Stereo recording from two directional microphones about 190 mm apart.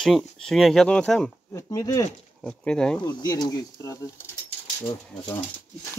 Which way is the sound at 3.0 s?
20° left (ahead or behind).